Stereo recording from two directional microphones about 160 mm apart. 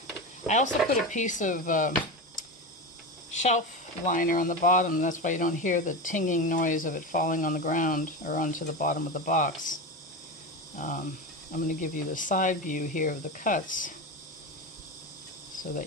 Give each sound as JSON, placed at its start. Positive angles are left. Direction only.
{"t": 0.5, "sound": "speech", "side_deg": 50}
{"t": 11.5, "sound": "speech", "side_deg": 55}